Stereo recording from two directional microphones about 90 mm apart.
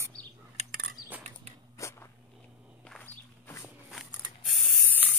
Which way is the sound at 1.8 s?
35° left (ahead or behind).